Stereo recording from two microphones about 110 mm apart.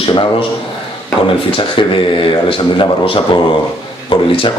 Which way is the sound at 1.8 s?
50° left (ahead or behind).